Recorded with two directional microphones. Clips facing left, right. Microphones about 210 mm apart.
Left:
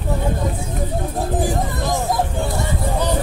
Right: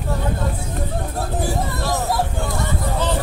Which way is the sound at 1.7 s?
15° left (ahead or behind).